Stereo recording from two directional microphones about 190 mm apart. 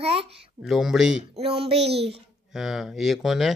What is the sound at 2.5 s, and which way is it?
Speech, centre (ahead or behind).